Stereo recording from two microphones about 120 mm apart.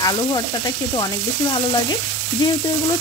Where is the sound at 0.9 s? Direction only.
40° left (ahead or behind).